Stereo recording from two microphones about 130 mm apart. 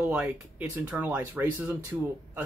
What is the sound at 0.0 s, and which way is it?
Speech, 10° right (ahead or behind).